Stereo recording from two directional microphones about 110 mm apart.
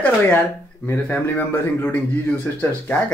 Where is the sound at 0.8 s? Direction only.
15° left (ahead or behind).